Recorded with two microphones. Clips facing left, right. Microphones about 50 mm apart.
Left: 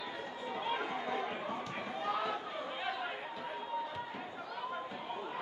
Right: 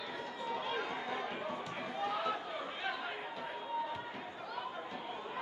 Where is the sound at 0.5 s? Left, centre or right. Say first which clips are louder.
Left 1 dB; centre.